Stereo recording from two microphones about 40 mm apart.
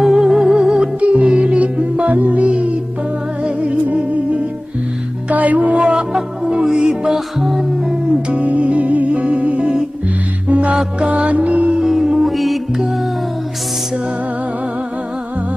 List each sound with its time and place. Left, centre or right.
0.0 s music: centre
1.0 s music: right
5.9 s music: right
8.3 s music: right
11.8 s music: centre